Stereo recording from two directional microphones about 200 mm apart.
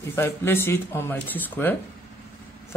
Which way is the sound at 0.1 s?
10° left (ahead or behind).